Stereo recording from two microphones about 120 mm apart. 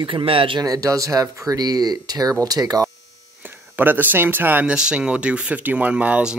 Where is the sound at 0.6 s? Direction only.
30° right (ahead or behind).